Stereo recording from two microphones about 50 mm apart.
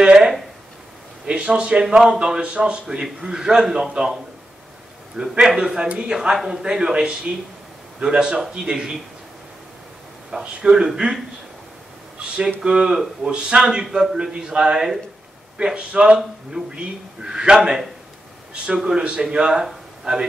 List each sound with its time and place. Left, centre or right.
0.0 s a sound: centre
1.2 s speech: centre
5.4 s speech: centre
6.1 s speech: centre
10.6 s speech: centre
12.6 s speech: centre